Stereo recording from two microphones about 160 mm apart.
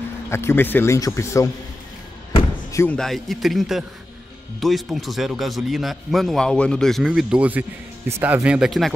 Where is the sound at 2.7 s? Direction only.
15° left (ahead or behind).